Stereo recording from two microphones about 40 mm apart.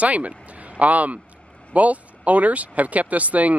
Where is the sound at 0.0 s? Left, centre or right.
Right.